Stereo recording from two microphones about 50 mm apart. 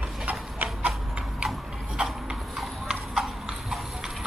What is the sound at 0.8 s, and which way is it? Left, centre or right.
Tick-tock, right.